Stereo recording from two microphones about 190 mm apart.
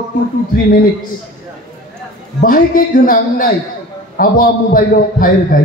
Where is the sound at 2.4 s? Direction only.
50° left (ahead or behind).